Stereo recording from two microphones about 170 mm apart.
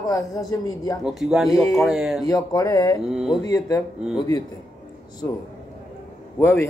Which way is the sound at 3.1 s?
Centre (ahead or behind).